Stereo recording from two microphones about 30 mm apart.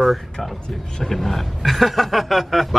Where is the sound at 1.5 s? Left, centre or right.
Centre.